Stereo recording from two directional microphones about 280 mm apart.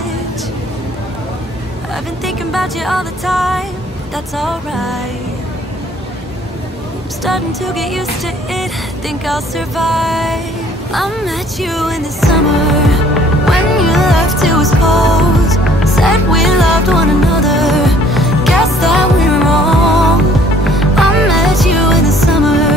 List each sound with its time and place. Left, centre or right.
2.2 s music: centre
7.2 s music: centre
9.2 s music: centre